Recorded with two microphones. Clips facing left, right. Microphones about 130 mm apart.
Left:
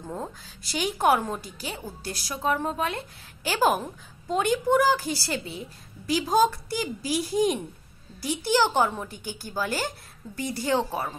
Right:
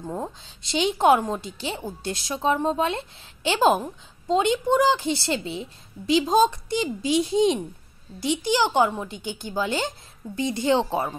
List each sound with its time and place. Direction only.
0.0 s a woman's voice: 20° right (ahead or behind)